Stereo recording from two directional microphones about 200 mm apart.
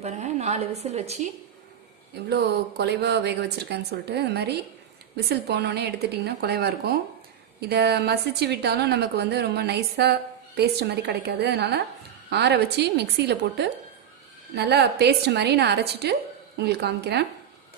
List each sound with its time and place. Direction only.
0.0 s a woman's voice: 35° right (ahead or behind)
2.2 s a woman's voice: 55° right (ahead or behind)